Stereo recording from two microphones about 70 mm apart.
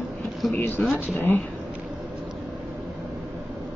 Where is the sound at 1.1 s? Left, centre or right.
Left.